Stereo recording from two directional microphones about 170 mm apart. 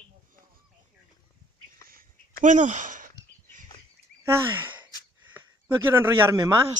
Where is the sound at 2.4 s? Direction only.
45° right (ahead or behind).